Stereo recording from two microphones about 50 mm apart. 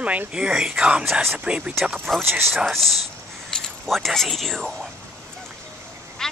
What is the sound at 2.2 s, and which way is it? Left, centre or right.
Speech, right.